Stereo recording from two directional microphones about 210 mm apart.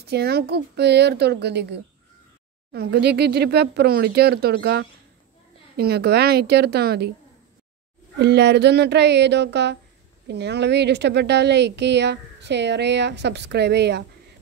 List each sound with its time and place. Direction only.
0.0 s speech: 50° right (ahead or behind)
8.2 s speech: 55° right (ahead or behind)